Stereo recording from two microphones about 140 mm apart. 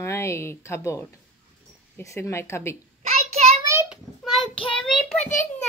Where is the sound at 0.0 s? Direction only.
20° left (ahead or behind).